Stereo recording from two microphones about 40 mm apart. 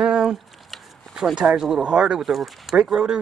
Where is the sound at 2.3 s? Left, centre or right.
Centre.